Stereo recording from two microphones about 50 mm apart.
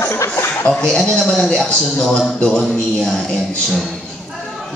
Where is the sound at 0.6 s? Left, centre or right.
Left.